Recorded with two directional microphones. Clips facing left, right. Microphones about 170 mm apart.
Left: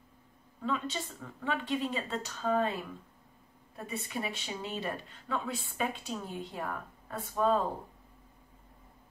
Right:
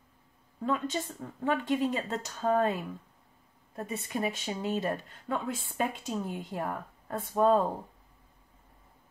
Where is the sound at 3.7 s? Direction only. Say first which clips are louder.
Right 3 dB; 45° right (ahead or behind).